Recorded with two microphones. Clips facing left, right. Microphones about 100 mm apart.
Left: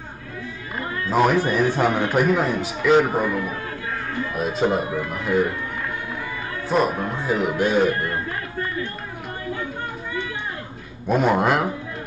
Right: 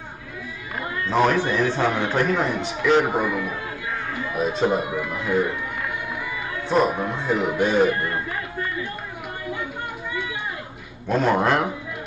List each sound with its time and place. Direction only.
1.0 s a man's voice: 5° left (ahead or behind)
3.1 s a man's voice: 10° right (ahead or behind)
4.3 s speech: centre (ahead or behind)
4.8 s a man's voice: 15° right (ahead or behind)
6.7 s speech: centre (ahead or behind)
11.1 s speech: 10° left (ahead or behind)